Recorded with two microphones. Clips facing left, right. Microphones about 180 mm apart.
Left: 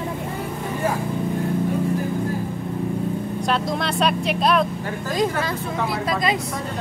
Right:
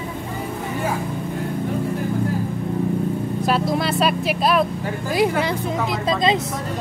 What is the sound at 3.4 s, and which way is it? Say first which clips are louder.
Speech: right 3 dB; 5° right (ahead or behind).